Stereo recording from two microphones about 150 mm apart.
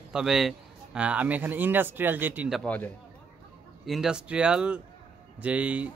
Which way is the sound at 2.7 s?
10° left (ahead or behind).